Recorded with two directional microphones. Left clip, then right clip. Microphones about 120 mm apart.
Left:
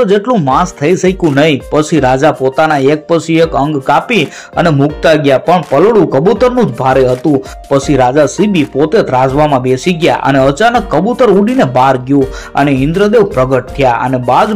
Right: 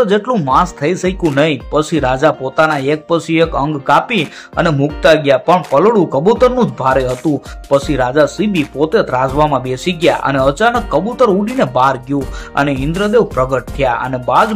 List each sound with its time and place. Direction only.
0.0 s speech: 25° left (ahead or behind)